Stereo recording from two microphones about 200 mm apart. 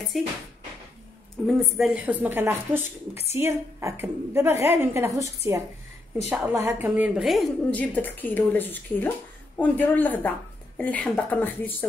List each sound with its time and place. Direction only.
0.1 s a woman's voice: centre (ahead or behind)
1.5 s a woman's voice: centre (ahead or behind)
2.8 s a woman's voice: 30° left (ahead or behind)
3.3 s a woman's voice: 10° right (ahead or behind); by 11.7 s 10° left (ahead or behind)